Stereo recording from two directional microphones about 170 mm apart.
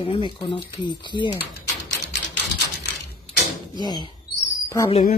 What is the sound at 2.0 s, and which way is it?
Typewriter, 90° left.